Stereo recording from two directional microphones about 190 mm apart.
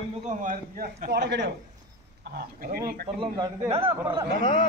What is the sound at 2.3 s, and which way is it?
Speech, 50° right (ahead or behind).